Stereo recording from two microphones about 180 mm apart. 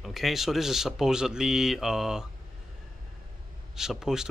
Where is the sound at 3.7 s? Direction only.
5° right (ahead or behind).